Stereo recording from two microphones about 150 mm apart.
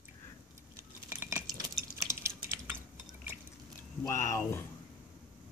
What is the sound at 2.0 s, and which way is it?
Typing, 20° right (ahead or behind).